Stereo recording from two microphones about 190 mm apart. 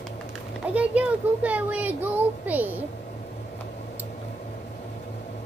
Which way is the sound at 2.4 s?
10° right (ahead or behind).